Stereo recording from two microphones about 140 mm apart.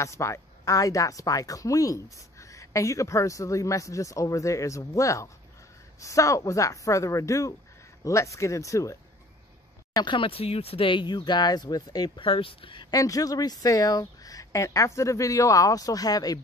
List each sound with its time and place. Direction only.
0.0 s speech: 20° left (ahead or behind)
9.9 s speech: 35° left (ahead or behind)
12.9 s speech: 25° left (ahead or behind)